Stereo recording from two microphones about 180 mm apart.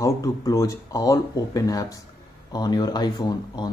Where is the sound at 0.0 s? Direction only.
20° left (ahead or behind).